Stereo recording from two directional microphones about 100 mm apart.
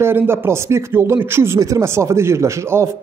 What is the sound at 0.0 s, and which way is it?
Speech, 20° right (ahead or behind).